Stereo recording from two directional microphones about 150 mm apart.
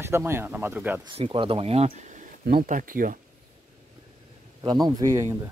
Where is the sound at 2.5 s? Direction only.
70° right (ahead or behind).